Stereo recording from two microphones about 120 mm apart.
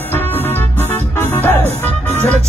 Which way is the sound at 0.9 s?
20° left (ahead or behind).